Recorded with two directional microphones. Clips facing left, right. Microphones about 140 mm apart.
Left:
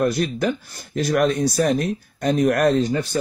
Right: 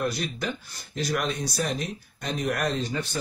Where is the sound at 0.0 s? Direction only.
50° left (ahead or behind).